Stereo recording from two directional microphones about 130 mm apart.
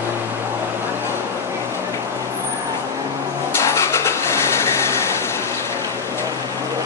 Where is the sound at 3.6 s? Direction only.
20° left (ahead or behind).